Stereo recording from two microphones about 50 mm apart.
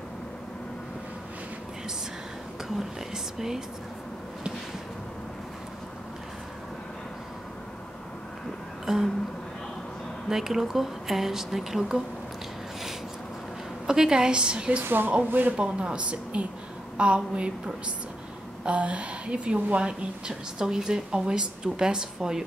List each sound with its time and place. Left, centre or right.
3.3 s a woman's voice: centre
8.8 s a sound: centre
10.3 s a woman's voice: centre
13.8 s a woman's voice: centre
14.8 s speech: right
15.5 s a woman's voice: right
18.6 s a woman's voice: right